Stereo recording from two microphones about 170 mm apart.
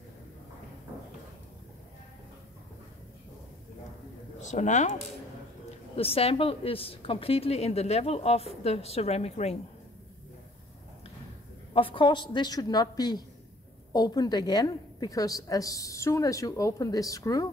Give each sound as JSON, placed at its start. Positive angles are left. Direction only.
{"t": 4.4, "sound": "speech", "side_deg": 45}
{"t": 5.9, "sound": "a woman's voice", "side_deg": 35}
{"t": 11.7, "sound": "a woman's voice", "side_deg": 30}